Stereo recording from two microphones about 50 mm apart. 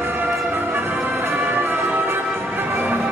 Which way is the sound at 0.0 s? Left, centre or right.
Right.